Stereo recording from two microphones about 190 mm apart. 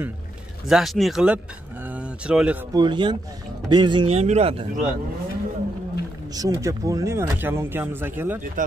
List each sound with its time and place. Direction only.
0.7 s speech: centre (ahead or behind)
2.7 s a man's voice: 25° right (ahead or behind)
6.3 s speech: 15° right (ahead or behind)
8.6 s speech: 45° right (ahead or behind)